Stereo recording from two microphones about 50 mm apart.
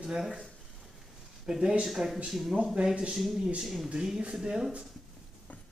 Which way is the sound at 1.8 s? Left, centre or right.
Centre.